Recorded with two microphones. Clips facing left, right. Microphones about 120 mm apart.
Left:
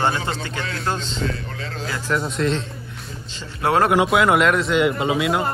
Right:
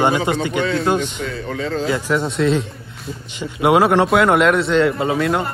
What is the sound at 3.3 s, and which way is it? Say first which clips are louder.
Speech: right 5 dB; 15° right (ahead or behind).